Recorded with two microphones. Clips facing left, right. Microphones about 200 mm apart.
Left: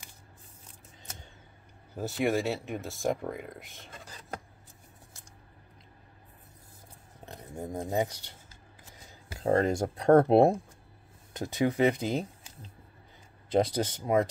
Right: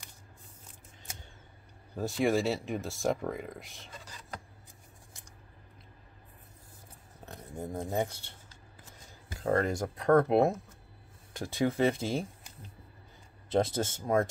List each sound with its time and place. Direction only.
2.0 s speech: 5° left (ahead or behind)
3.9 s a sound: 50° left (ahead or behind)
7.7 s speech: 10° left (ahead or behind)
9.4 s speech: 25° left (ahead or behind)
11.3 s speech: 20° left (ahead or behind)
13.6 s speech: 15° left (ahead or behind)